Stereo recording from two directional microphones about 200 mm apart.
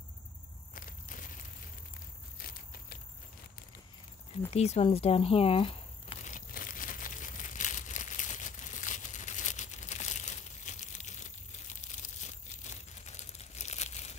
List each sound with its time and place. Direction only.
0.7 s walk: 45° left (ahead or behind)
2.4 s a sound: 45° left (ahead or behind)
4.5 s speech: 30° left (ahead or behind)
6.3 s crumpling: 45° left (ahead or behind)